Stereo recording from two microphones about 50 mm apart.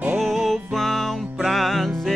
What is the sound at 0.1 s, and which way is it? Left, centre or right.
Music, centre.